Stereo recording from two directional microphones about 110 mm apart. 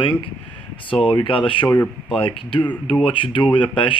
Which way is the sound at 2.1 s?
55° left (ahead or behind).